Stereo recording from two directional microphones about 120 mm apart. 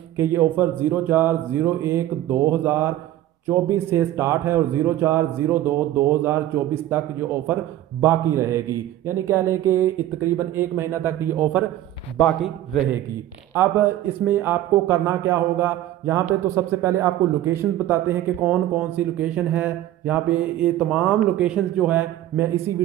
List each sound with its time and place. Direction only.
0.2 s a man's voice: 20° right (ahead or behind)
8.0 s a man's voice: 20° right (ahead or behind)
12.2 s a man's voice: centre (ahead or behind)
13.6 s a man's voice: 20° right (ahead or behind)